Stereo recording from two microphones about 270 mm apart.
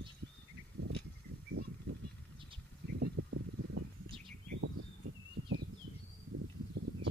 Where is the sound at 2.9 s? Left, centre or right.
Right.